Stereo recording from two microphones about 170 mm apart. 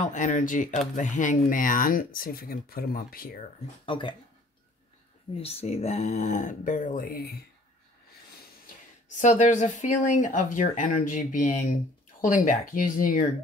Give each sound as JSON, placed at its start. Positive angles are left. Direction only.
{"t": 0.0, "sound": "speech", "side_deg": 45}
{"t": 3.8, "sound": "speech", "side_deg": 30}
{"t": 5.3, "sound": "speech", "side_deg": 35}
{"t": 8.6, "sound": "speech", "side_deg": 45}